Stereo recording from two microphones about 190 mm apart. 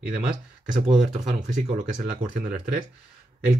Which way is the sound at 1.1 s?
40° right (ahead or behind).